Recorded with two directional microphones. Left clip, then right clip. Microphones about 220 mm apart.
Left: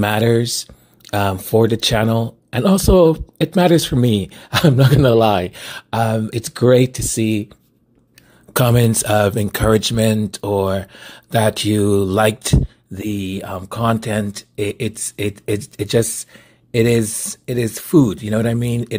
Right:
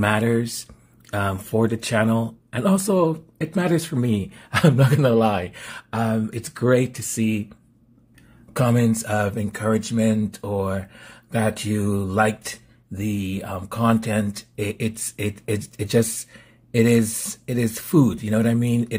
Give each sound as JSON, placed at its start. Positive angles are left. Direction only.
{"t": 0.0, "sound": "speech", "side_deg": 30}
{"t": 8.5, "sound": "speech", "side_deg": 40}